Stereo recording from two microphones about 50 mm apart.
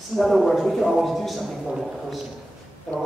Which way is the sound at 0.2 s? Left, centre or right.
Centre.